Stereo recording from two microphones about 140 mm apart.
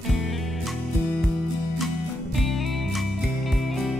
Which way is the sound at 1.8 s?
Centre (ahead or behind).